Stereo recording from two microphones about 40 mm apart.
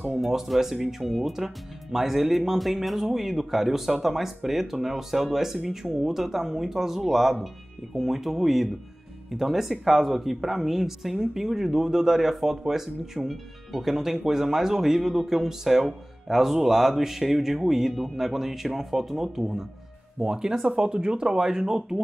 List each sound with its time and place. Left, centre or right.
0.2 s speech: centre